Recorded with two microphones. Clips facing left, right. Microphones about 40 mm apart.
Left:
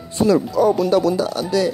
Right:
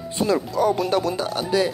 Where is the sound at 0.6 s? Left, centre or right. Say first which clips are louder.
Left 4 dB; right.